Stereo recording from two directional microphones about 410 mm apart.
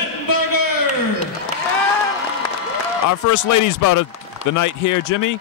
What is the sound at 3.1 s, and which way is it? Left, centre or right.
Speech, left.